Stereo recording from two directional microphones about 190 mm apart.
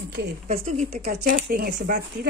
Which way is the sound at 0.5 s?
40° right (ahead or behind).